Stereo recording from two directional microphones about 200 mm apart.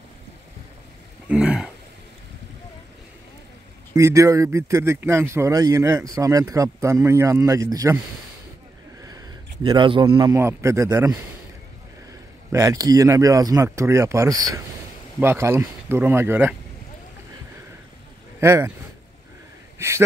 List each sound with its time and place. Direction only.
1.3 s a sound: 5° right (ahead or behind)
3.9 s speech: 15° right (ahead or behind)
9.0 s a man's voice: 20° right (ahead or behind)
12.5 s speech: 15° right (ahead or behind)
18.4 s speech: 15° right (ahead or behind)